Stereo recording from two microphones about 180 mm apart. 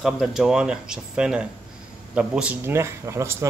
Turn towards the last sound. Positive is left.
turn(degrees=-15)  # may be behind; listen again after turning